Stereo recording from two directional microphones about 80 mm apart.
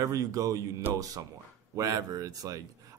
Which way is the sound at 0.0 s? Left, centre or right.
Right.